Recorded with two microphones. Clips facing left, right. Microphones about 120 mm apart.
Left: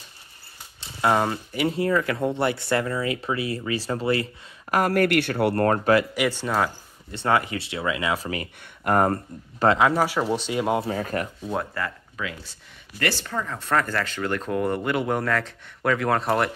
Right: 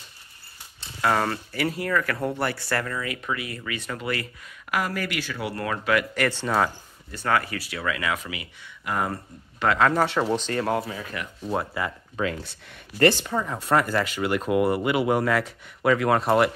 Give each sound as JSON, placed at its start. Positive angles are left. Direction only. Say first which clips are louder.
{"t": 1.0, "sound": "speech", "louder": "left 2 dB", "side_deg": 15}
{"t": 4.6, "sound": "speech", "louder": "left 7 dB", "side_deg": 50}
{"t": 6.1, "sound": "speech", "louder": "left 1 dB", "side_deg": 10}
{"t": 7.1, "sound": "speech", "louder": "left 2 dB", "side_deg": 25}
{"t": 8.2, "sound": "speech", "louder": "left 6 dB", "side_deg": 40}
{"t": 9.8, "sound": "speech", "louder": "even", "side_deg": 10}
{"t": 10.9, "sound": "speech", "louder": "left 7 dB", "side_deg": 45}
{"t": 11.7, "sound": "speech", "louder": "right 1 dB", "side_deg": -15}
{"t": 12.2, "sound": "speech", "louder": "right 6 dB", "side_deg": -30}
{"t": 13.1, "sound": "speech", "louder": "right 2 dB", "side_deg": -15}